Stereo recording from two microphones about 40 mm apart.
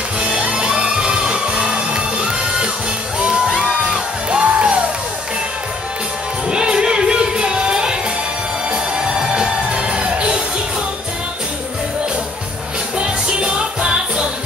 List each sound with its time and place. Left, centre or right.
0.2 s music: right
6.5 s music: right
9.2 s music: right
13.0 s music: right